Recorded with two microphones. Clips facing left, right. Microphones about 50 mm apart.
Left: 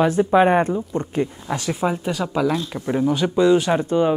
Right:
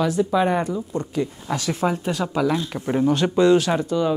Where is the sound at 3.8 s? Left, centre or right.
Left.